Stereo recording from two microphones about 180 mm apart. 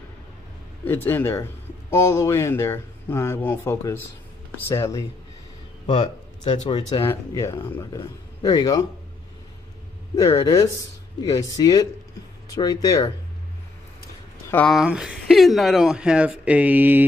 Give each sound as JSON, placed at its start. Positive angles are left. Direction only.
{"t": 0.8, "sound": "speech", "side_deg": 10}
{"t": 5.9, "sound": "speech", "side_deg": 25}
{"t": 7.1, "sound": "speech", "side_deg": 15}
{"t": 10.1, "sound": "speech", "side_deg": 20}
{"t": 14.5, "sound": "speech", "side_deg": 5}
{"t": 14.8, "sound": "speech", "side_deg": -5}